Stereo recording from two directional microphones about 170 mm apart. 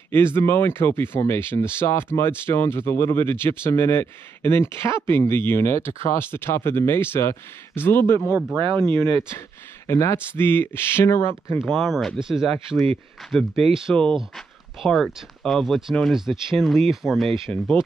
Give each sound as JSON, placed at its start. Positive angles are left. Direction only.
{"t": 0.1, "sound": "speech", "side_deg": 15}
{"t": 8.3, "sound": "speech", "side_deg": -10}
{"t": 8.5, "sound": "speech", "side_deg": -30}
{"t": 9.8, "sound": "speech", "side_deg": 15}
{"t": 11.6, "sound": "speech", "side_deg": 0}